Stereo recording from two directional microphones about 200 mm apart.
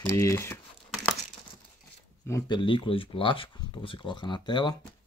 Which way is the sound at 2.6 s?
25° left (ahead or behind).